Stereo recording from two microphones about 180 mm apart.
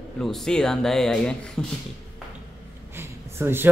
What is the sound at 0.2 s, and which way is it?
Speech, 5° left (ahead or behind).